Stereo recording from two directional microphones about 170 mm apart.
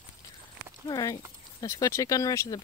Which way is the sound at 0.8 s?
20° left (ahead or behind).